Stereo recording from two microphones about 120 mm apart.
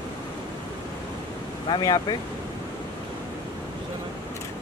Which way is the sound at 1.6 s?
40° left (ahead or behind).